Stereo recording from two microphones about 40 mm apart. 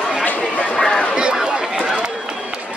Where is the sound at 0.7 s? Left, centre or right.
Centre.